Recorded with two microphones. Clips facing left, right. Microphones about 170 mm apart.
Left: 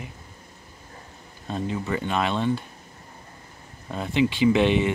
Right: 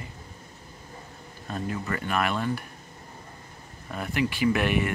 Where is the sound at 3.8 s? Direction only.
25° left (ahead or behind).